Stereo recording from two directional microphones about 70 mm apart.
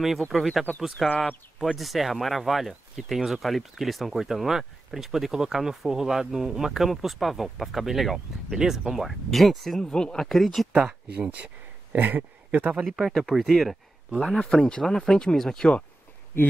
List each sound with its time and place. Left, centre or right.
0.3 s speech: centre
10.8 s speech: centre
12.8 s speech: centre